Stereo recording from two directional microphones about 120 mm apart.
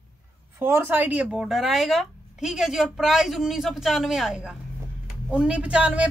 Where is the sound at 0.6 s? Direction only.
20° right (ahead or behind).